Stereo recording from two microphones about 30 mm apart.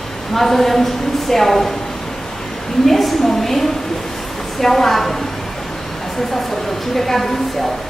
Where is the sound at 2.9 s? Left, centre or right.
Centre.